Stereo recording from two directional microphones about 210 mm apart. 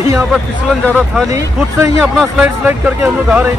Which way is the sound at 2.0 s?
5° right (ahead or behind).